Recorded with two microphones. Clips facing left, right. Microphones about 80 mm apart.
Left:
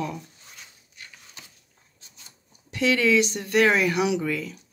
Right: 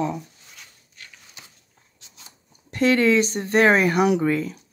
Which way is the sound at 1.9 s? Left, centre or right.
Right.